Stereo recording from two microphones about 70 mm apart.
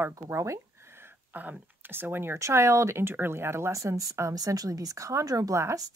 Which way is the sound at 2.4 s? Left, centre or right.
Right.